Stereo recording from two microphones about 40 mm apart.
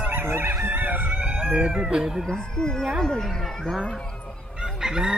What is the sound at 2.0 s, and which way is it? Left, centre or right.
Speech, centre.